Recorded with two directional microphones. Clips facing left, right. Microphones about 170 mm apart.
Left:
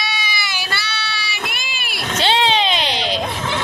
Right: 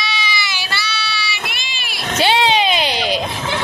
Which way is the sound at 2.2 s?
10° right (ahead or behind).